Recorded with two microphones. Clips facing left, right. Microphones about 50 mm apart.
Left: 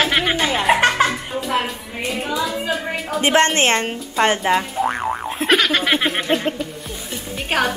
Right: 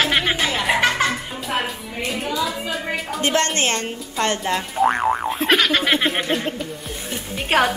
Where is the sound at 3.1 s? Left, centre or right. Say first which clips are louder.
Left 5 dB; left.